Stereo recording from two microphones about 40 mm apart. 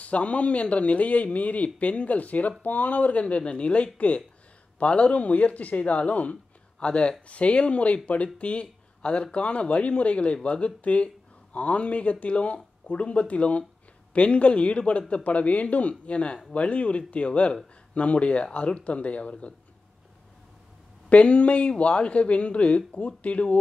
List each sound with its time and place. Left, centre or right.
0.0 s speech: left
21.1 s speech: left